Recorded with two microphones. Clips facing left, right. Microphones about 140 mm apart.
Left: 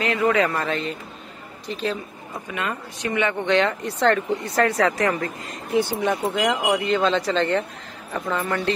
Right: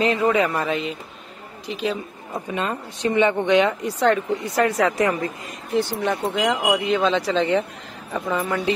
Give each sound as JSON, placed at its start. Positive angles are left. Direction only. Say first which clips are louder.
{"t": 0.0, "sound": "speech", "louder": "right 1 dB", "side_deg": -20}
{"t": 2.3, "sound": "speech", "louder": "right 3 dB", "side_deg": -25}
{"t": 5.8, "sound": "speech", "louder": "left 1 dB", "side_deg": 15}
{"t": 6.3, "sound": "speech", "louder": "right 1 dB", "side_deg": 0}